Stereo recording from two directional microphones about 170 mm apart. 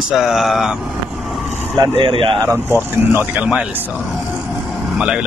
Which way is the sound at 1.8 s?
30° right (ahead or behind).